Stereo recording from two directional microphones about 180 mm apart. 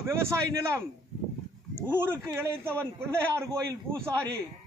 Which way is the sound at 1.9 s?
10° right (ahead or behind).